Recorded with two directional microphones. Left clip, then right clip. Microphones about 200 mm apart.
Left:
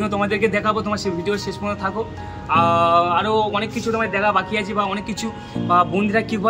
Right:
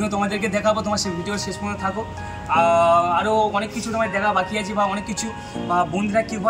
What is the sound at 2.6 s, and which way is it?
Speech, 25° left (ahead or behind).